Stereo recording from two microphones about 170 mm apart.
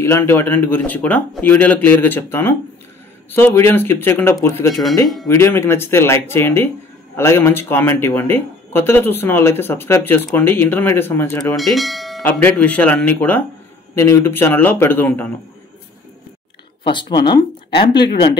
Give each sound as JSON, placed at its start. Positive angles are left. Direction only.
{"t": 0.0, "sound": "speech", "side_deg": 15}
{"t": 11.5, "sound": "speech", "side_deg": 0}
{"t": 16.8, "sound": "speech", "side_deg": 25}